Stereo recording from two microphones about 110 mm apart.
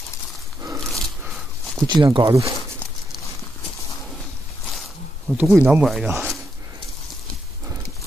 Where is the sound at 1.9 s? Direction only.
40° right (ahead or behind).